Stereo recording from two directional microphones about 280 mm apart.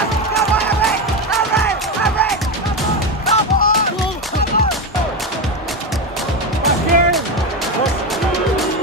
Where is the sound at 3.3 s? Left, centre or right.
Left.